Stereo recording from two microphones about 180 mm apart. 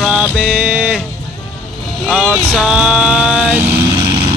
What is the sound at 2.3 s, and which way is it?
Vehicle, centre (ahead or behind).